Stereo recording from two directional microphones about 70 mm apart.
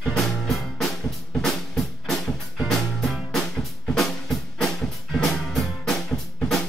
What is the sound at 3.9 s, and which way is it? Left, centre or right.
Music, centre.